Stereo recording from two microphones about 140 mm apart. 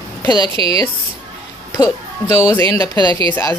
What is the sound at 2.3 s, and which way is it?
Speech, 20° left (ahead or behind).